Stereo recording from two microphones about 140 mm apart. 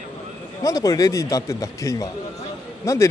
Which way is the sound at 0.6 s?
25° left (ahead or behind).